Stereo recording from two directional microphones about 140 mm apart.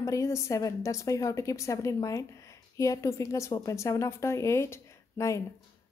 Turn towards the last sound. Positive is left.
turn(degrees=20)  # may be behind; listen again after turning